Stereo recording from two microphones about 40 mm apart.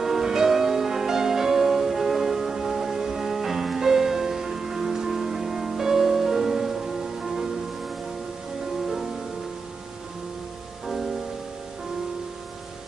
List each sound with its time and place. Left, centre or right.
0.0 s music: centre